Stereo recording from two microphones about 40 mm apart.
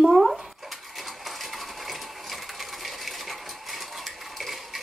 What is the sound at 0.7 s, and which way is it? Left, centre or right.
Coin, centre.